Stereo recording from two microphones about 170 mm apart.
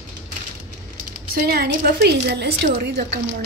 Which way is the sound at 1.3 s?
65° right (ahead or behind).